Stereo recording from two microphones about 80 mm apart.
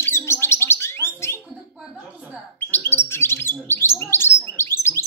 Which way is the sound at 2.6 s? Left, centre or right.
Left.